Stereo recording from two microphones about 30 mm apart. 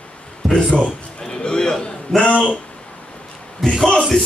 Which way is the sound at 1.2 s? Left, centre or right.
Left.